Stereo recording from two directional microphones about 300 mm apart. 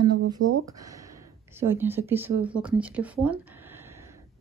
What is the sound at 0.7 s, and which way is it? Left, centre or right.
A woman's voice, centre.